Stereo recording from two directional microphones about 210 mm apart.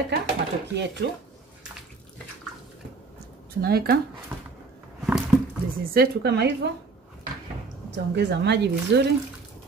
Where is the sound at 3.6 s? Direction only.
45° right (ahead or behind).